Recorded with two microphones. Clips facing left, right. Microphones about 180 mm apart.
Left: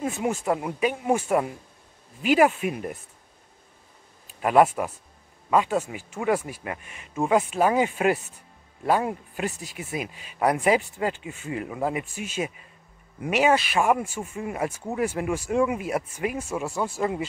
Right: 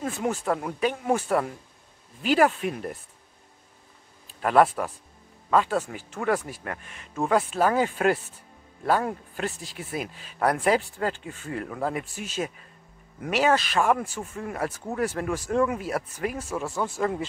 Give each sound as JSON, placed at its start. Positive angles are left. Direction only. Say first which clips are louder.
{"t": 0.0, "sound": "speech", "louder": "left 1 dB", "side_deg": 5}
{"t": 4.4, "sound": "speech", "louder": "left 1 dB", "side_deg": 5}
{"t": 13.2, "sound": "speech", "louder": "left 1 dB", "side_deg": 10}